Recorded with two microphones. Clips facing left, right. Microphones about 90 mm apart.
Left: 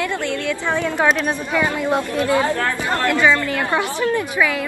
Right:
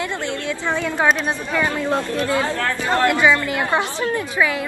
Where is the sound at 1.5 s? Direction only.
15° left (ahead or behind).